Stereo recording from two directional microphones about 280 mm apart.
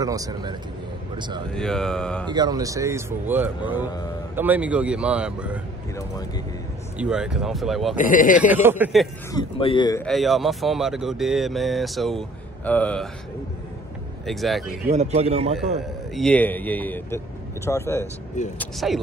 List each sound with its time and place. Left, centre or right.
0.0 s speech: centre
1.5 s speech: centre
2.2 s speech: centre
5.9 s a man's voice: centre
7.0 s speech: centre
7.9 s speech: left
8.6 s speech: centre
9.3 s a man's voice: centre
10.0 s speech: centre
14.2 s speech: centre
14.9 s a man's voice: right
16.2 s a man's voice: centre